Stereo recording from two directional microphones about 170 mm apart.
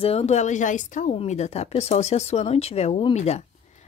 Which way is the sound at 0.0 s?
35° left (ahead or behind).